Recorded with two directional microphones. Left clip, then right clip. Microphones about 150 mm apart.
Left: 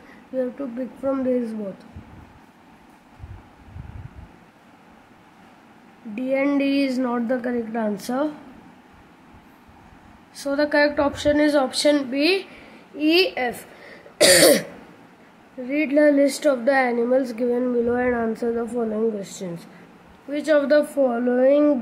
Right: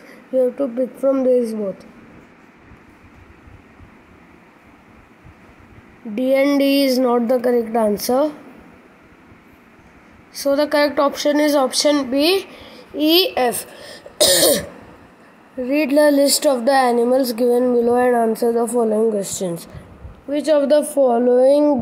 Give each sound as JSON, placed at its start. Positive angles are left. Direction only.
{"t": 0.6, "sound": "speech", "side_deg": -25}
{"t": 6.1, "sound": "speech", "side_deg": -25}
{"t": 10.3, "sound": "speech", "side_deg": -25}
{"t": 15.6, "sound": "speech", "side_deg": -25}